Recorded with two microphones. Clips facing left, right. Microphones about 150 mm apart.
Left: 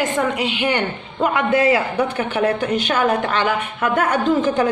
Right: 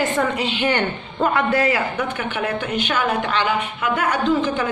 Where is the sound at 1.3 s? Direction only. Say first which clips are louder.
Left 4 dB; 25° left (ahead or behind).